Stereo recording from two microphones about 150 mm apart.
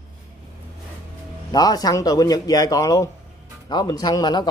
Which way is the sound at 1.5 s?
25° left (ahead or behind).